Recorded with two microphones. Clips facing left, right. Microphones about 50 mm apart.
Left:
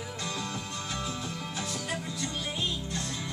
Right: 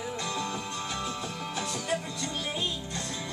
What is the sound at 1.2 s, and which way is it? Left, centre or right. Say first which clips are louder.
Music: right 2 dB; centre.